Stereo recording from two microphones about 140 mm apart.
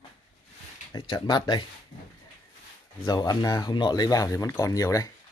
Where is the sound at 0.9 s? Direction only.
30° left (ahead or behind).